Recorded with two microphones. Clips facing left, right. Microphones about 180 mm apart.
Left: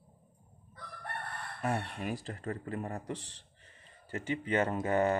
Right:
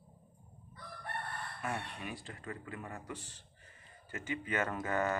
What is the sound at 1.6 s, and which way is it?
Speech, 40° left (ahead or behind).